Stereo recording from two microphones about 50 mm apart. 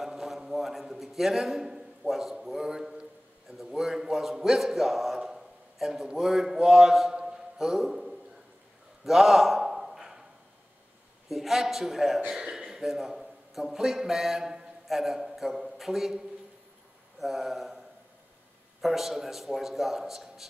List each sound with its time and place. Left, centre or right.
0.0 s a sound: centre
2.4 s a man's voice: centre
9.0 s a sound: centre
11.2 s a man's voice: centre
17.2 s a man's voice: centre
18.8 s a man's voice: centre